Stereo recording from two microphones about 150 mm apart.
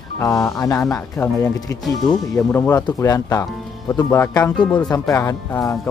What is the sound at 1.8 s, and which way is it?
Speech, centre (ahead or behind).